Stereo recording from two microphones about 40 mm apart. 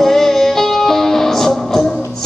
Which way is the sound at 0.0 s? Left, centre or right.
Centre.